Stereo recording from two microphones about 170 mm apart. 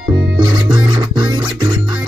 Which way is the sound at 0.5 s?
25° right (ahead or behind).